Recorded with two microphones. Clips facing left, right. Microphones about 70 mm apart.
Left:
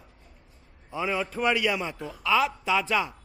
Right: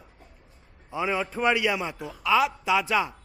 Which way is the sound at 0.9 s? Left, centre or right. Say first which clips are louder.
Right 1 dB; right.